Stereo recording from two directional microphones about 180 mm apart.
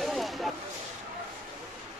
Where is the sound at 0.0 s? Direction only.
Centre (ahead or behind).